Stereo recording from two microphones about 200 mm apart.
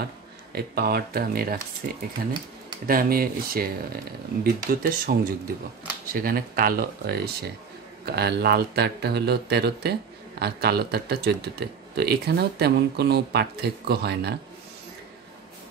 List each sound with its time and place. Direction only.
0.6 s speech: 50° right (ahead or behind)